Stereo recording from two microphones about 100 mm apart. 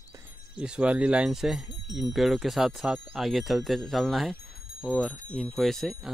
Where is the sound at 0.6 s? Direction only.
10° right (ahead or behind).